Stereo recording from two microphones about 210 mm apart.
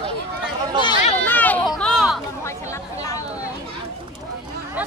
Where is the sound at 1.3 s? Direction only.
10° left (ahead or behind).